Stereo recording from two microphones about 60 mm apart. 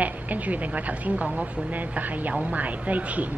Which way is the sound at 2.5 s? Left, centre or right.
Right.